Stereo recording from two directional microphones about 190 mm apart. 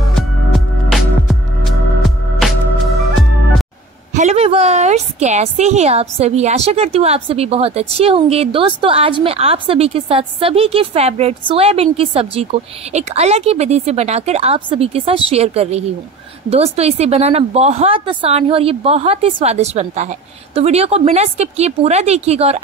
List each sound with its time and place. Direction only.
0.1 s music: centre (ahead or behind)
4.1 s a woman's voice: 35° right (ahead or behind)